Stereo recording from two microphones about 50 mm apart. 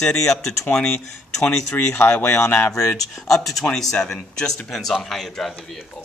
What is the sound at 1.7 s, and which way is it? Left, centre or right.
Speech, left.